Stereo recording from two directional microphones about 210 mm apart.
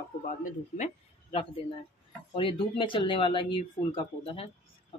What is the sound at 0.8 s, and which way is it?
Speech, 25° left (ahead or behind).